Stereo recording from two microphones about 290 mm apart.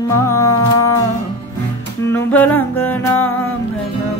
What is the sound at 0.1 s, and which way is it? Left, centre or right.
Music, centre.